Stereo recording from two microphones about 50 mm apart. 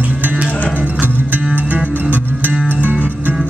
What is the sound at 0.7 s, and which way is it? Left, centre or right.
Music, right.